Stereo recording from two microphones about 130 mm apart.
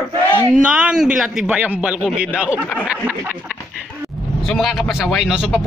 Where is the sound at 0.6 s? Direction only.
10° right (ahead or behind).